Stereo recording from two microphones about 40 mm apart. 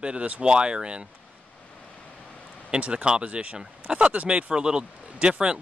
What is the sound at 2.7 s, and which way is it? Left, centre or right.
Speech, right.